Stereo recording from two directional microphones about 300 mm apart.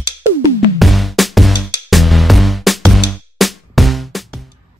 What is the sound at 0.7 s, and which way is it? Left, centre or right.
Music, centre.